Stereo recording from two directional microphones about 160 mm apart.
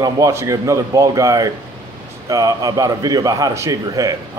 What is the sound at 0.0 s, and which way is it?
A man's voice, 20° right (ahead or behind).